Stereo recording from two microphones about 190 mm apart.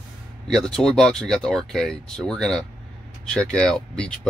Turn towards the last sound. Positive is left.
turn(degrees=5)  # may be behind; listen again after turning